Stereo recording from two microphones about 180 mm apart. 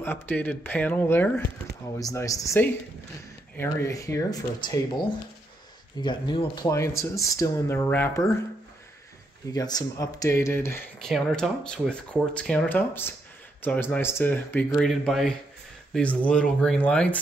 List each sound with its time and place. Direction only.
0.0 s speech: 10° left (ahead or behind)
9.5 s speech: 20° left (ahead or behind)
11.1 s speech: centre (ahead or behind)